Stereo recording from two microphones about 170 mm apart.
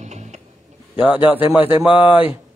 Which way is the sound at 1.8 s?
10° right (ahead or behind).